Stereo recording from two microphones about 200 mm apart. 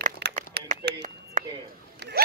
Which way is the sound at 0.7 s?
40° right (ahead or behind).